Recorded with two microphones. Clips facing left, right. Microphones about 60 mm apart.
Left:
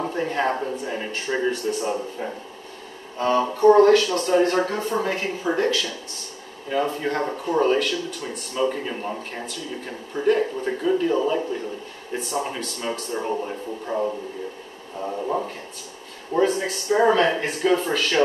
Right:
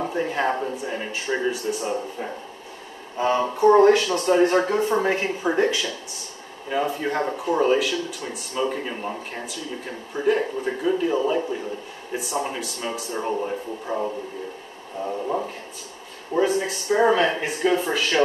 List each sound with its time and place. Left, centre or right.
0.1 s speech: centre
3.2 s speech: centre
6.7 s speech: centre
16.3 s speech: centre